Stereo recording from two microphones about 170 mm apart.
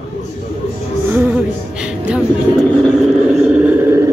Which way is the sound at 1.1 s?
10° right (ahead or behind).